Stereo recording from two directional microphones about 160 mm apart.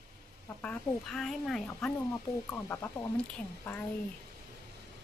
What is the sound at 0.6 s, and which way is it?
Speech, 5° left (ahead or behind).